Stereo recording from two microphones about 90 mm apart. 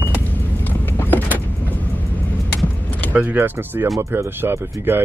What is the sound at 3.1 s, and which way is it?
Speech, 20° right (ahead or behind).